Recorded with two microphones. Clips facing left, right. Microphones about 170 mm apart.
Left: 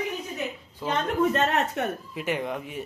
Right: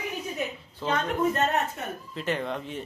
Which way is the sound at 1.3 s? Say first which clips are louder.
Left 2 dB; 90° left.